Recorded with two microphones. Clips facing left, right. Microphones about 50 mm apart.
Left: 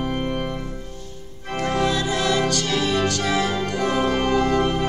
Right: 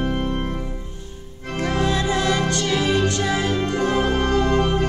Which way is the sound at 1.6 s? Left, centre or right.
Right.